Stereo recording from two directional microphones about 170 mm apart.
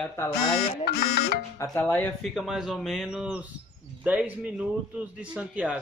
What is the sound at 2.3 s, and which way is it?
A man's voice, centre (ahead or behind).